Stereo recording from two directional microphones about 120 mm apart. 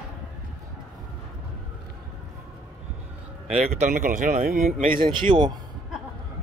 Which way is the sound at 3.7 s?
90° right.